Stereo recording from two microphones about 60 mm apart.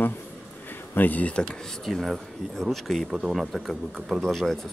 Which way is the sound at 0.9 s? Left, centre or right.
Left.